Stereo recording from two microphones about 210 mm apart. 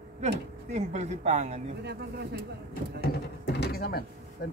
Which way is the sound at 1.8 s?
50° right (ahead or behind).